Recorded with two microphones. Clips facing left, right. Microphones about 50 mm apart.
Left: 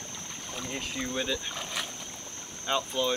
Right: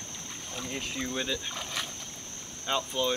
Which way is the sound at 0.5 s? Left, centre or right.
Centre.